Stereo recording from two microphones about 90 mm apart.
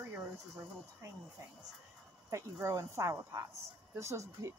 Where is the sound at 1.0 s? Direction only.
30° right (ahead or behind).